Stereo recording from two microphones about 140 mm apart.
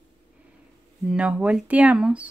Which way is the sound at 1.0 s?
10° right (ahead or behind).